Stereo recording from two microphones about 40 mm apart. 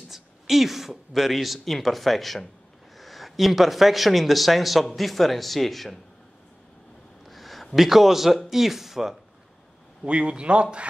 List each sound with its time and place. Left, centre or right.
0.1 s speech: centre
7.2 s a sound: centre
7.7 s speech: centre
10.0 s speech: right